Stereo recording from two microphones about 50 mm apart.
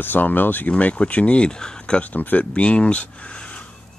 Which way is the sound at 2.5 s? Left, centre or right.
Left.